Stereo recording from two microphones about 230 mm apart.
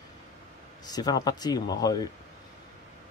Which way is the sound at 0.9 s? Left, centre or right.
Centre.